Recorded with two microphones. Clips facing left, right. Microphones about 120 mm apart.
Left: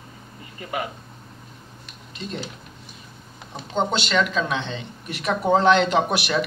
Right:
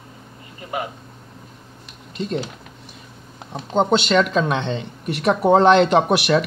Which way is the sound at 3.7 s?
55° right (ahead or behind).